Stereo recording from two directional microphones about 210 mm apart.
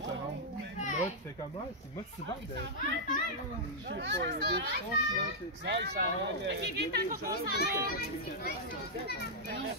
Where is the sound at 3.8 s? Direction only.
55° right (ahead or behind).